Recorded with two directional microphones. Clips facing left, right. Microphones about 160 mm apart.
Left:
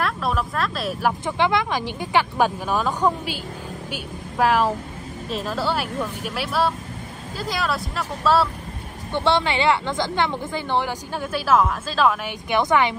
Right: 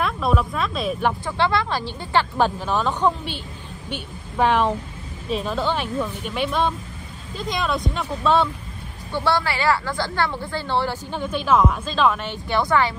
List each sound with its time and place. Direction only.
0.0 s speech: centre (ahead or behind)
1.2 s a woman's voice: 15° left (ahead or behind)
9.1 s speech: 20° left (ahead or behind)